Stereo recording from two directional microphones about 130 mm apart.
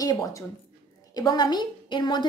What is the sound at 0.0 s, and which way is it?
A woman's voice, 30° left (ahead or behind).